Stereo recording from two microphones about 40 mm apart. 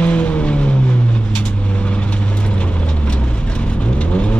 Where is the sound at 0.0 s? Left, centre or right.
Left.